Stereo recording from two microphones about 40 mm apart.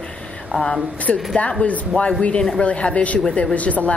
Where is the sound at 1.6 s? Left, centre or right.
Left.